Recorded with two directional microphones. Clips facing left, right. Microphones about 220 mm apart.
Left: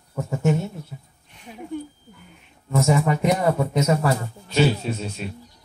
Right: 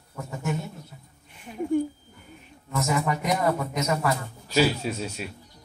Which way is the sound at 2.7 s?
30° left (ahead or behind).